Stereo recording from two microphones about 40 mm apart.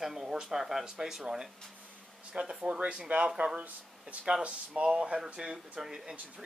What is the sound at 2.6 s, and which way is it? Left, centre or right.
Speech, right.